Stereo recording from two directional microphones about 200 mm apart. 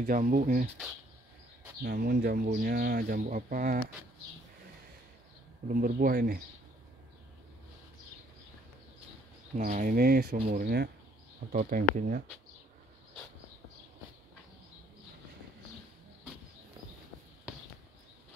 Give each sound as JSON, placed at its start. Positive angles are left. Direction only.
{"t": 0.0, "sound": "speech", "side_deg": -45}
{"t": 1.8, "sound": "speech", "side_deg": -50}
{"t": 5.7, "sound": "speech", "side_deg": -45}
{"t": 9.6, "sound": "speech", "side_deg": -40}